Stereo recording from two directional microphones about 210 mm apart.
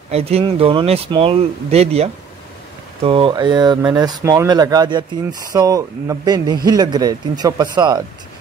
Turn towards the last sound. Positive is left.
turn(degrees=-20)  # may be behind; listen again after turning